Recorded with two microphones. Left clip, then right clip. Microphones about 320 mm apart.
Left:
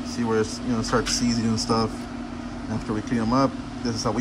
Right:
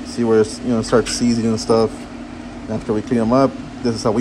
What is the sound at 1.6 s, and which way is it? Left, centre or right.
Speech, centre.